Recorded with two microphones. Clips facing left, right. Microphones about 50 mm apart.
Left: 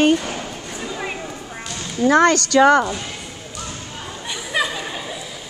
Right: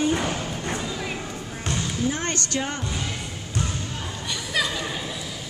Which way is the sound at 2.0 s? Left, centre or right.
Left.